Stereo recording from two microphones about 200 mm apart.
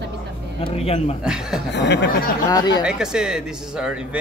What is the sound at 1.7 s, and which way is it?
Speech, 60° left (ahead or behind).